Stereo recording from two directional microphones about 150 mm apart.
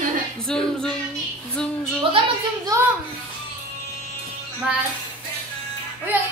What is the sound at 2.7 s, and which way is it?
Speech, 25° right (ahead or behind).